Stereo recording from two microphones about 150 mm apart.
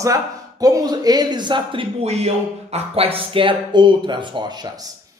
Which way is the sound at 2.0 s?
45° right (ahead or behind).